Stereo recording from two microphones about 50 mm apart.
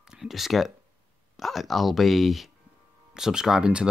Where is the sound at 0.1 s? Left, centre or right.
Centre.